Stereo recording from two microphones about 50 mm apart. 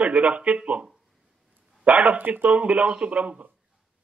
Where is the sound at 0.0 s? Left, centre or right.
Right.